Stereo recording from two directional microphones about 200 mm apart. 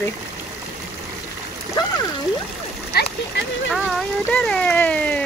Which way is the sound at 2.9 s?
55° left (ahead or behind).